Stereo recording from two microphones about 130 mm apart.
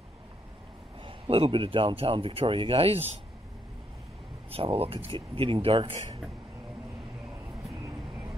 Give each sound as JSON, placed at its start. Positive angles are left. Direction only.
{"t": 1.0, "sound": "speech", "side_deg": -45}
{"t": 4.5, "sound": "speech", "side_deg": -45}
{"t": 7.7, "sound": "vehicle", "side_deg": -30}